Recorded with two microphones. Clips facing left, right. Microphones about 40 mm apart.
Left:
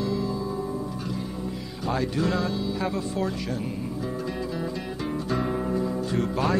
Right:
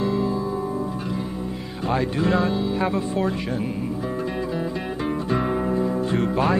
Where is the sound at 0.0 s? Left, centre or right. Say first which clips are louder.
Right 5 dB; right.